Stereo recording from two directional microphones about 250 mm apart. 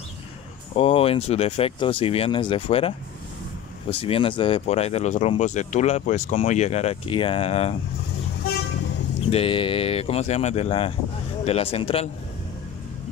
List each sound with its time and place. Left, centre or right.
0.7 s speech: left
4.0 s speech: left
9.3 s speech: left